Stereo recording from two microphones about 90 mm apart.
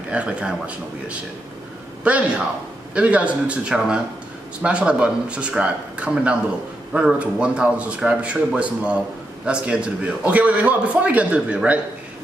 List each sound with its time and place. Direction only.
0.1 s a man's voice: 15° right (ahead or behind)